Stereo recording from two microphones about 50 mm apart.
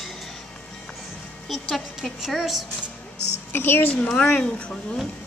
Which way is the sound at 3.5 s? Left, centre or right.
Left.